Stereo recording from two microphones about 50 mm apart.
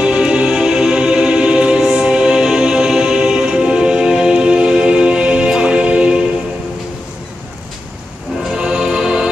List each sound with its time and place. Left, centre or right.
0.0 s music: centre
8.4 s music: centre